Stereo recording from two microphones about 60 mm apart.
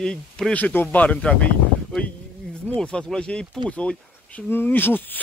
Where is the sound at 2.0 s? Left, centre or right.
Left.